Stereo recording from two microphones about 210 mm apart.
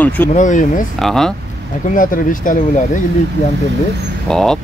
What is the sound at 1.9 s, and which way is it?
Speech, 40° left (ahead or behind).